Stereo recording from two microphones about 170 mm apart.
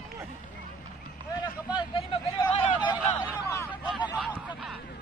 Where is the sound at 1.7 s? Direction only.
30° left (ahead or behind).